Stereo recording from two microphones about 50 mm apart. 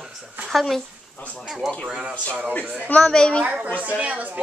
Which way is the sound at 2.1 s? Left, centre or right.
Left.